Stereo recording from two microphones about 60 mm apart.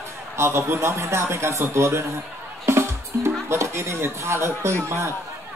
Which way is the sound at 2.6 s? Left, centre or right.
Right.